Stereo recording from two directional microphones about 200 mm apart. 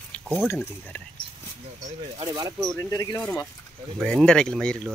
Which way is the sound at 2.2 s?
20° right (ahead or behind).